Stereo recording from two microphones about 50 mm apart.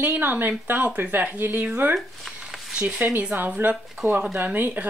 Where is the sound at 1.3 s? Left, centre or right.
Right.